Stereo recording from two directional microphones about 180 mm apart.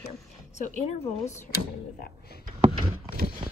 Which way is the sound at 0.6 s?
40° left (ahead or behind).